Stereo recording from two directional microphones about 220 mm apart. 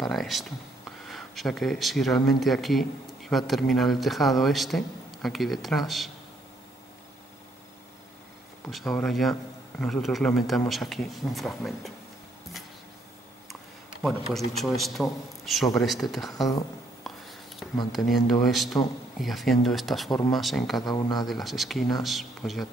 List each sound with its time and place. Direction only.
0.0 s speech: centre (ahead or behind)
8.6 s speech: centre (ahead or behind)
13.5 s speech: centre (ahead or behind)
17.0 s a sound: centre (ahead or behind)
17.9 s speech: centre (ahead or behind)
20.1 s speech: 15° left (ahead or behind)
20.3 s speech: centre (ahead or behind)
20.9 s speech: 15° left (ahead or behind)
21.3 s speech: centre (ahead or behind)